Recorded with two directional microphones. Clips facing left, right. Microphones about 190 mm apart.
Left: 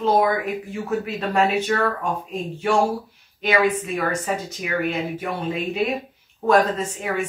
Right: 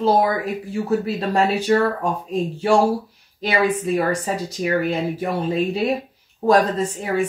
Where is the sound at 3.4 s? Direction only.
35° right (ahead or behind).